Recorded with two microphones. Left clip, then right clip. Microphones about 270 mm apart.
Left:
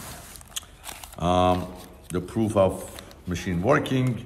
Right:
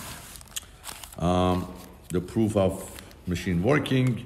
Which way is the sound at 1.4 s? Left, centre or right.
Centre.